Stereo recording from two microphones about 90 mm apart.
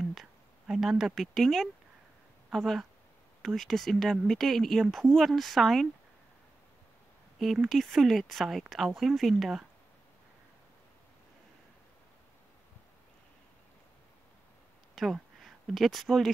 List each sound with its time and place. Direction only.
0.0 s a sound: centre (ahead or behind)
2.5 s speech: 5° left (ahead or behind)
7.3 s speech: centre (ahead or behind)
15.0 s speech: centre (ahead or behind)